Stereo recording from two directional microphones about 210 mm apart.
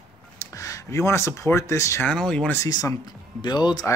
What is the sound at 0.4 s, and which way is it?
Speech, 15° left (ahead or behind).